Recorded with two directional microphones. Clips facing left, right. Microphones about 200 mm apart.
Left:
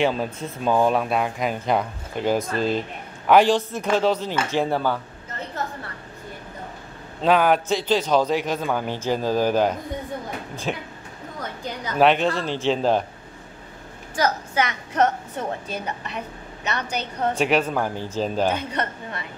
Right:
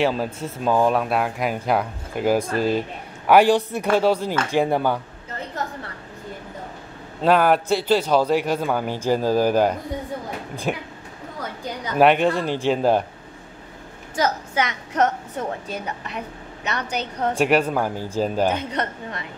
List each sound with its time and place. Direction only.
0.0 s a man's voice: 5° right (ahead or behind)
7.2 s a man's voice: 5° right (ahead or behind)
14.1 s a woman's voice: 20° right (ahead or behind)
16.6 s a man's voice: 15° right (ahead or behind)